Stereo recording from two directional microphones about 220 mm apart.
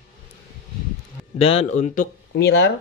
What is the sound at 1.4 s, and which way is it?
Speech, 25° left (ahead or behind).